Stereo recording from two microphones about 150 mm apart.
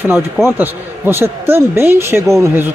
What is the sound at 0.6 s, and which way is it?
Speech, 15° right (ahead or behind).